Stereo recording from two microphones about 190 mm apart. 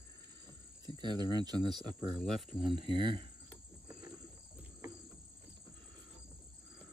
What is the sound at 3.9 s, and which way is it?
Insect, 20° right (ahead or behind).